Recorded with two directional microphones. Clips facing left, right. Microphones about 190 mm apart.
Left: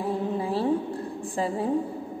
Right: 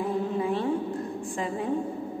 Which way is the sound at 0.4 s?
35° left (ahead or behind).